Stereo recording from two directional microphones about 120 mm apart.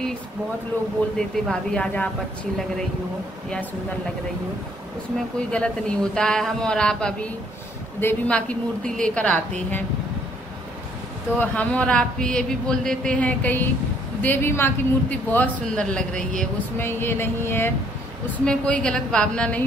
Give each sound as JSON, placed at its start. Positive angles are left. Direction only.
{"t": 1.1, "sound": "a man's voice", "side_deg": 5}
{"t": 5.5, "sound": "a man's voice", "side_deg": 10}
{"t": 11.3, "sound": "a man's voice", "side_deg": 10}
{"t": 16.7, "sound": "speech", "side_deg": 20}
{"t": 18.4, "sound": "a man's voice", "side_deg": 10}